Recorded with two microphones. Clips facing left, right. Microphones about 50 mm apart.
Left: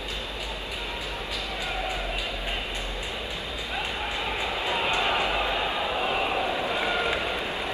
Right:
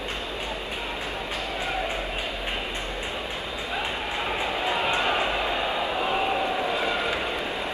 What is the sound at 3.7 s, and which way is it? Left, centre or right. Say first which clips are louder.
Vehicle: right 1 dB; centre.